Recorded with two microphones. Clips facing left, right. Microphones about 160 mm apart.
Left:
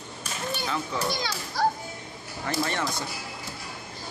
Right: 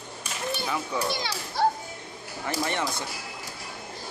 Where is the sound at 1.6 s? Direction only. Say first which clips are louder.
Right 1 dB; 25° right (ahead or behind).